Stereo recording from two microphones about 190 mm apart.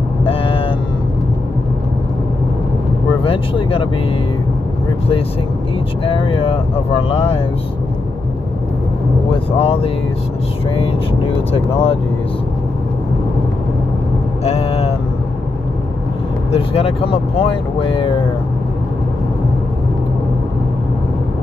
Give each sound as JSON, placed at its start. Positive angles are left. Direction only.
{"t": 0.2, "sound": "vehicle", "side_deg": 30}
{"t": 3.3, "sound": "speech", "side_deg": 30}
{"t": 6.0, "sound": "speech", "side_deg": 25}
{"t": 9.3, "sound": "speech", "side_deg": 30}
{"t": 11.5, "sound": "speech", "side_deg": 30}
{"t": 14.4, "sound": "vehicle", "side_deg": 30}
{"t": 16.5, "sound": "speech", "side_deg": 30}